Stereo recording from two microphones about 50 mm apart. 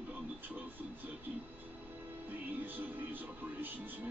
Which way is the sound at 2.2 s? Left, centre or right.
Right.